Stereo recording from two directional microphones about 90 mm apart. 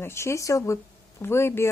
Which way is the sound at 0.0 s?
30° left (ahead or behind).